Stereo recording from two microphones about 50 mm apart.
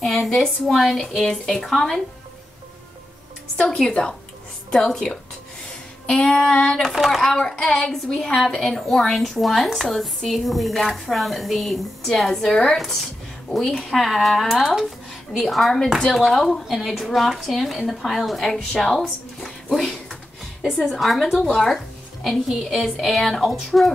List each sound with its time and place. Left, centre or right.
0.3 s a woman's voice: centre
3.5 s a woman's voice: centre
6.8 s a woman's voice: centre
7.2 s a woman's voice: centre
7.9 s a woman's voice: centre